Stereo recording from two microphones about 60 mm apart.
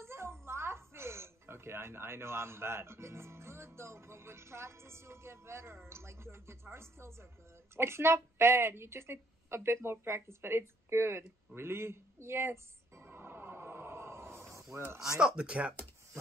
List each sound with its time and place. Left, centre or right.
0.0 s a woman's voice: right
15.0 s speech: centre